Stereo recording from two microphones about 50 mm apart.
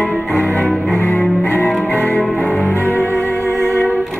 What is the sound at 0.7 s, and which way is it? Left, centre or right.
Cello, centre.